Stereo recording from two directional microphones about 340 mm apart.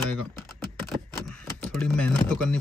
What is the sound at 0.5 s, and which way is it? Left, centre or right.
Computer keyboard, centre.